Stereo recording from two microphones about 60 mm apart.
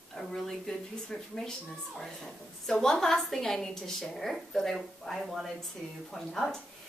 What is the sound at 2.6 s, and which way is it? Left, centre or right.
A woman's voice, centre.